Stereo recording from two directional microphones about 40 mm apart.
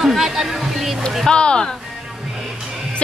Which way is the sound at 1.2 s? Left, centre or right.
Left.